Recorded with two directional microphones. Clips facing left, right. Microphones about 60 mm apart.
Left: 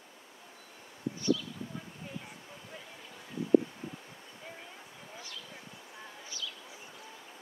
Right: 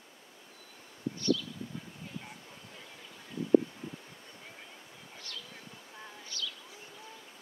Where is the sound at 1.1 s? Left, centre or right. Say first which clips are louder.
Even; centre.